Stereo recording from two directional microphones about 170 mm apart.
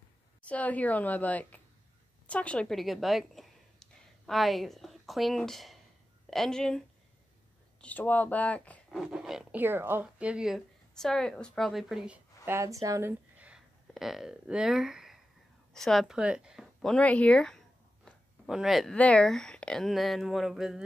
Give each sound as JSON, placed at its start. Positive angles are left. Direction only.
{"t": 0.5, "sound": "a woman's voice", "side_deg": 10}
{"t": 7.8, "sound": "speech", "side_deg": 10}
{"t": 9.0, "sound": "speech", "side_deg": -5}
{"t": 12.4, "sound": "speech", "side_deg": -15}
{"t": 13.4, "sound": "a sound", "side_deg": -5}
{"t": 15.7, "sound": "speech", "side_deg": 0}